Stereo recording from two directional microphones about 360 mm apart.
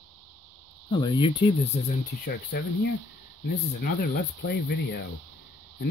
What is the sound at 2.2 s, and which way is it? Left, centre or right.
Speech, left.